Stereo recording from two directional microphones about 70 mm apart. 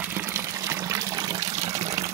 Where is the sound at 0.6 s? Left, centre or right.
Right.